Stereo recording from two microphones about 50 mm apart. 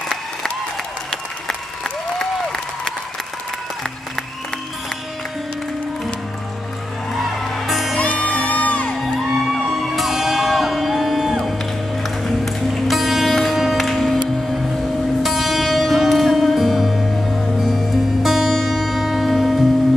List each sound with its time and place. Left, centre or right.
7.2 s music: centre
8.0 s music: left
8.9 s music: centre
13.3 s music: centre